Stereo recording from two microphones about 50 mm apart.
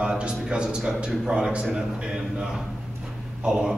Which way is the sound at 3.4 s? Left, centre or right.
Right.